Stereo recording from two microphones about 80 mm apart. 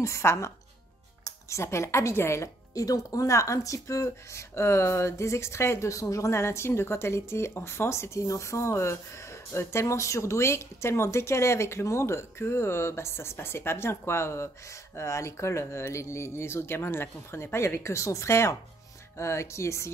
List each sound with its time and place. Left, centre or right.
0.0 s speech: left